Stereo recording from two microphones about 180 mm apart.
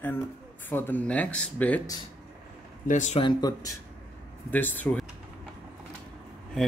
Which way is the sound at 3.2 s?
25° left (ahead or behind).